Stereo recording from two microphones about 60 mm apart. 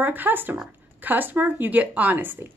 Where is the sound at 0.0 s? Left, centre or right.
Right.